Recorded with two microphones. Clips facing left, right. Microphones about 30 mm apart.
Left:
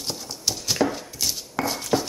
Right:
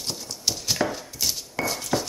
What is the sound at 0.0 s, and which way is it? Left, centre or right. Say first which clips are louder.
Horse: even; centre.